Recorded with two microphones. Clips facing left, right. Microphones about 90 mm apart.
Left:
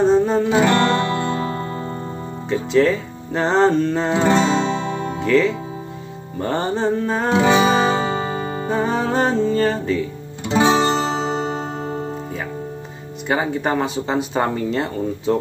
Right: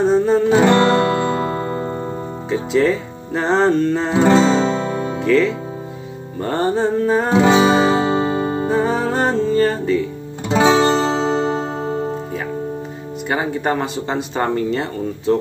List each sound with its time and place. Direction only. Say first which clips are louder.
0.0 s speech: right 1 dB; centre (ahead or behind)
2.5 s speech: even; centre (ahead or behind)
4.4 s music: right 3 dB; 40° right (ahead or behind)
5.2 s speech: right 1 dB; centre (ahead or behind)
7.4 s music: right 1 dB; 35° right (ahead or behind)
8.6 s music: even; centre (ahead or behind)
10.5 s music: right 2 dB; 35° right (ahead or behind)
13.3 s speech: even; centre (ahead or behind)